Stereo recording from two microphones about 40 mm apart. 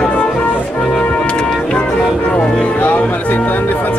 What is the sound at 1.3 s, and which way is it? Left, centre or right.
Music, left.